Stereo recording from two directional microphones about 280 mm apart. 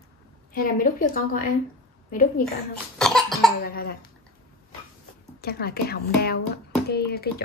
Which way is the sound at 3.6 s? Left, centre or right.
Left.